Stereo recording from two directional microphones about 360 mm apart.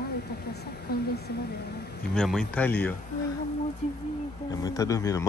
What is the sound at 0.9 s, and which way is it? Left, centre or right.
Speech, left.